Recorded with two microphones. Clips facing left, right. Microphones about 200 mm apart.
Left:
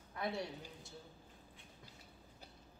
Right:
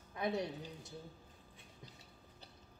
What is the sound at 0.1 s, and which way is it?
Speech, 20° right (ahead or behind).